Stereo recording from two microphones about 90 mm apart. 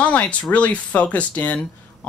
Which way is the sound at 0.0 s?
15° left (ahead or behind).